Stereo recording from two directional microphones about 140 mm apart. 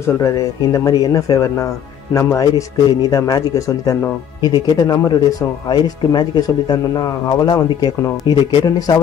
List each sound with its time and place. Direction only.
0.0 s speech: 20° left (ahead or behind)